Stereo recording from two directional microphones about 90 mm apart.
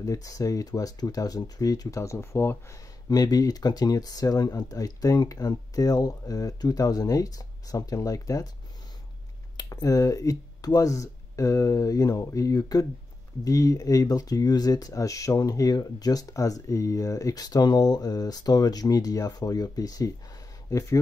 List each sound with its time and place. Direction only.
0.0 s speech: 40° left (ahead or behind)
3.1 s speech: 45° left (ahead or behind)
9.6 s speech: 45° left (ahead or behind)